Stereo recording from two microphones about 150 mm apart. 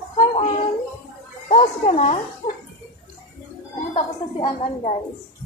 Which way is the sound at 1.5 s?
45° left (ahead or behind).